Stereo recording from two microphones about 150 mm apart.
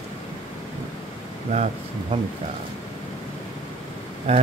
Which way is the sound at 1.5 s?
50° right (ahead or behind).